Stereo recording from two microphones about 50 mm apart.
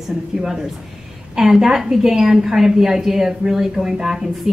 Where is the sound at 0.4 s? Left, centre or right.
Centre.